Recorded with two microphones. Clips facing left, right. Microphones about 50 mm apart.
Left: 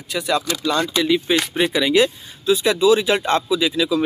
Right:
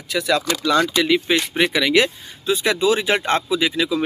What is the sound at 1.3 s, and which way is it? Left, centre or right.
Speech, right.